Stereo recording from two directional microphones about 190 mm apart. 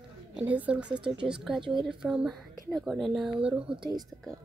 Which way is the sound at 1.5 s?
25° right (ahead or behind).